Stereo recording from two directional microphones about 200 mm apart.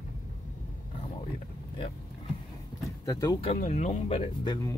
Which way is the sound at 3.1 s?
15° left (ahead or behind).